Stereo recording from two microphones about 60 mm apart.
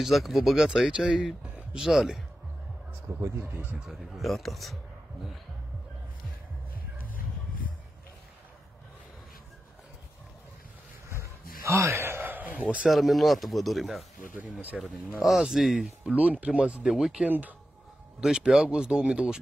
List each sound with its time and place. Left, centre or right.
0.0 s speech: centre
3.2 s speech: right
3.8 s speech: centre
11.1 s a sound: right
12.0 s a sound: right
12.8 s speech: centre
16.1 s speech: right
16.8 s speech: centre
17.3 s speech: right
18.2 s speech: centre